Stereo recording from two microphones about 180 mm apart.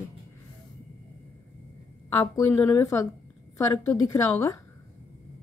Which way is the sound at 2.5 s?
15° left (ahead or behind).